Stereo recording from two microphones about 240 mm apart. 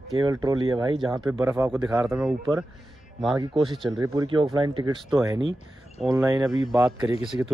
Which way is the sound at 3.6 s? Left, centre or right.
Centre.